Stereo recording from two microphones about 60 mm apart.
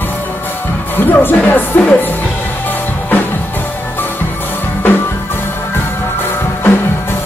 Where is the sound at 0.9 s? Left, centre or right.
Left.